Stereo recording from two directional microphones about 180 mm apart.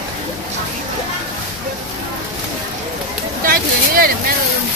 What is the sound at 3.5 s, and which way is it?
Speech, 55° right (ahead or behind).